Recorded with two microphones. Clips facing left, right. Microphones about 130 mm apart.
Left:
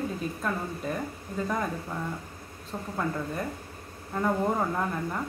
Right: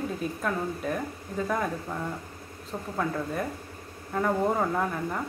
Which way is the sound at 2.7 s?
Centre (ahead or behind).